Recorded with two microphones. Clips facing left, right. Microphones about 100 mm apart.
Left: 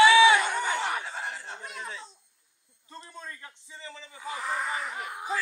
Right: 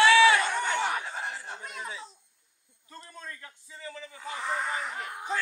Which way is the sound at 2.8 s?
20° left (ahead or behind).